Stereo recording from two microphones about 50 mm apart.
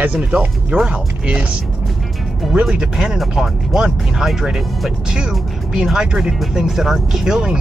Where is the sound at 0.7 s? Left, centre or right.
Centre.